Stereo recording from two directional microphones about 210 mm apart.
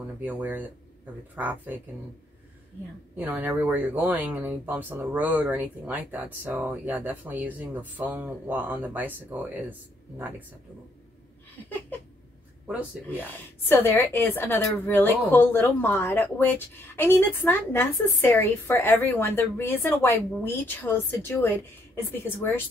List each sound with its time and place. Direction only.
0.0 s speech: 10° right (ahead or behind)
3.2 s speech: 10° right (ahead or behind)
12.6 s speech: 5° right (ahead or behind)
13.7 s a woman's voice: 10° left (ahead or behind)